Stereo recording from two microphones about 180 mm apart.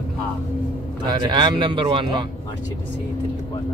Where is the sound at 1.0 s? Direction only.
25° right (ahead or behind).